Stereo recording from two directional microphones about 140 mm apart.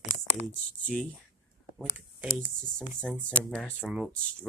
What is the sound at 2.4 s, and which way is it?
Speech, 5° left (ahead or behind).